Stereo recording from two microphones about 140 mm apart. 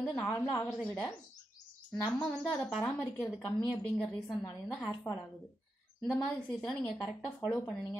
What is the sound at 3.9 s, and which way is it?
Speech, centre (ahead or behind).